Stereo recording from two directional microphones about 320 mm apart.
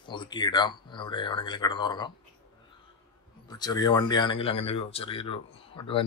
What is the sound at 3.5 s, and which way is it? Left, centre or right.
Speech, centre.